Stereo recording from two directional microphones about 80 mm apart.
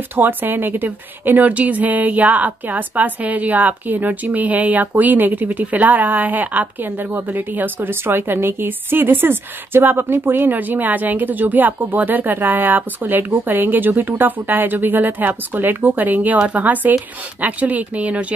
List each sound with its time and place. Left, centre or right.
0.1 s a woman's voice: right